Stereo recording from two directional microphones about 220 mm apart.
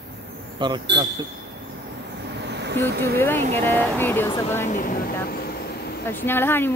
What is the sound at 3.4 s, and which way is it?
Insect, 30° right (ahead or behind).